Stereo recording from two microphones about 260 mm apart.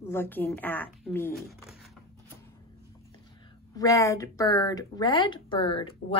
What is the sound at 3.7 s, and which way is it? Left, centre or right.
Speech, centre.